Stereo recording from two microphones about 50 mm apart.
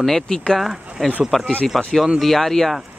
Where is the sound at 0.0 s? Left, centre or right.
Centre.